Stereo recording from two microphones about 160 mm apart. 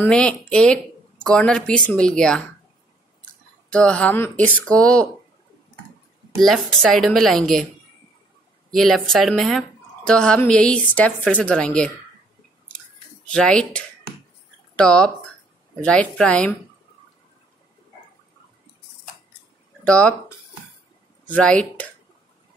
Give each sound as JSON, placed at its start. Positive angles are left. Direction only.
{"t": 0.0, "sound": "speech", "side_deg": 5}
{"t": 3.7, "sound": "a woman's voice", "side_deg": 5}
{"t": 6.3, "sound": "speech", "side_deg": 0}
{"t": 8.7, "sound": "a woman's voice", "side_deg": 0}
{"t": 13.3, "sound": "a woman's voice", "side_deg": 5}
{"t": 19.8, "sound": "a woman's voice", "side_deg": 5}